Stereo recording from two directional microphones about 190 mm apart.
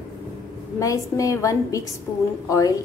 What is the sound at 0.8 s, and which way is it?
A woman's voice, 15° left (ahead or behind).